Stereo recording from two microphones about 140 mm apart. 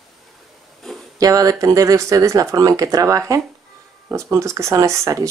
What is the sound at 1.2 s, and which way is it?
Speech, 25° right (ahead or behind).